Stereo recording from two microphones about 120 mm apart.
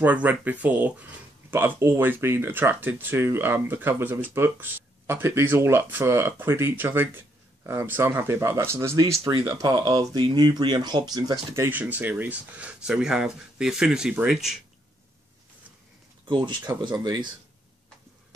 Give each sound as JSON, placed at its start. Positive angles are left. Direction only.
{"t": 0.0, "sound": "speech", "side_deg": -15}
{"t": 11.5, "sound": "speech", "side_deg": -20}
{"t": 16.3, "sound": "speech", "side_deg": -40}